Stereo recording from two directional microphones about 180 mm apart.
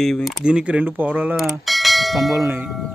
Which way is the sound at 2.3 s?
10° right (ahead or behind).